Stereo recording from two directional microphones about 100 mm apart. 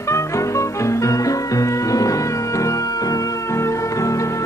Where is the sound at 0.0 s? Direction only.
30° left (ahead or behind).